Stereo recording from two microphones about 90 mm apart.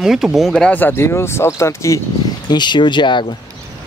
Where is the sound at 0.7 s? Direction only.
20° left (ahead or behind).